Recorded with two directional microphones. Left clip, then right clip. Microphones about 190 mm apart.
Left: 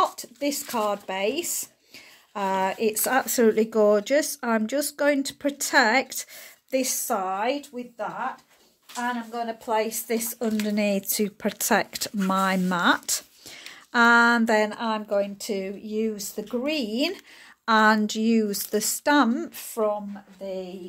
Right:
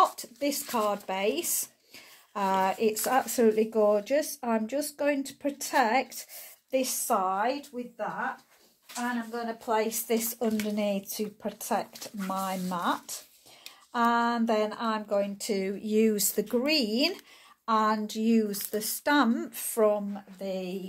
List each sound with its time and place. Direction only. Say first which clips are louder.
0.0 s speech: left 1 dB; 5° left (ahead or behind)
9.3 s speech: left 3 dB; 5° left (ahead or behind)
10.4 s speech: left 3 dB; 20° left (ahead or behind); by 15.7 s centre (ahead or behind)
15.8 s speech: right 3 dB; 25° right (ahead or behind)
16.5 s speech: left 1 dB; 10° right (ahead or behind)
17.6 s speech: left 7 dB; 35° left (ahead or behind)
18.1 s speech: left 3 dB; 15° left (ahead or behind)
20.4 s speech: left 1 dB; 40° right (ahead or behind)